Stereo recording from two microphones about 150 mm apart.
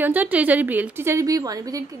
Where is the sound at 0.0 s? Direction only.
10° right (ahead or behind).